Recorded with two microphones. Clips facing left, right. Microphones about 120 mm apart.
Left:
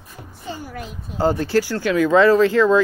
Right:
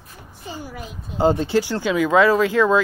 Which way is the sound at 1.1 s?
20° right (ahead or behind).